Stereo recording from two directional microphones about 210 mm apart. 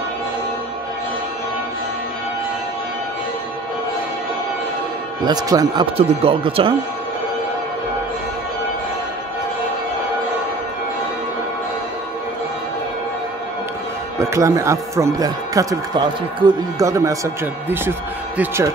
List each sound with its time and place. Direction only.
5.2 s speech: 20° right (ahead or behind)
14.2 s speech: 15° right (ahead or behind)